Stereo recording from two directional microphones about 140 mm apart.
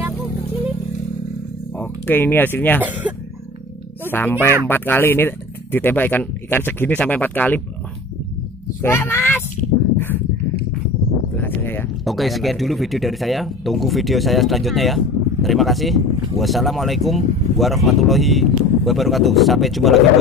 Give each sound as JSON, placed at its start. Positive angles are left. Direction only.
{"t": 1.8, "sound": "speech", "side_deg": 15}
{"t": 2.8, "sound": "speech", "side_deg": -10}
{"t": 4.1, "sound": "speech", "side_deg": 15}
{"t": 8.8, "sound": "speech", "side_deg": 15}
{"t": 9.9, "sound": "a sound", "side_deg": 15}
{"t": 11.3, "sound": "a sound", "side_deg": 15}
{"t": 12.0, "sound": "speech", "side_deg": 0}